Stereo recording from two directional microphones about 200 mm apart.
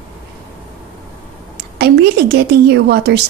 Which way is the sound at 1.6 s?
55° right (ahead or behind).